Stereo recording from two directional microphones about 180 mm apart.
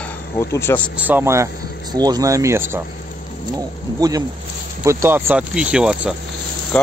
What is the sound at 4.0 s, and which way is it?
Speech, 20° right (ahead or behind).